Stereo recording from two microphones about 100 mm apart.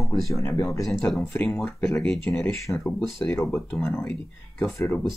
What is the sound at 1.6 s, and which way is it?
Speech, 5° left (ahead or behind).